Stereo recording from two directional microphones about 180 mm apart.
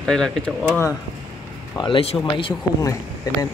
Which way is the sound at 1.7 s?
30° left (ahead or behind).